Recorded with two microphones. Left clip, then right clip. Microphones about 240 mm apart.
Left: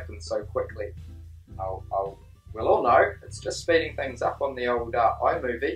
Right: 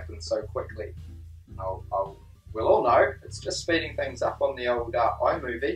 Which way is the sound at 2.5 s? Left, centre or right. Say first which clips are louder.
Even; centre.